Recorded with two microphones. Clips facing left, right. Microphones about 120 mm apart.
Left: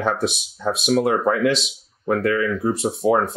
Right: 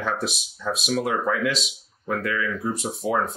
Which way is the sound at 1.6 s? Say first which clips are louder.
Left 7 dB; 40° left (ahead or behind).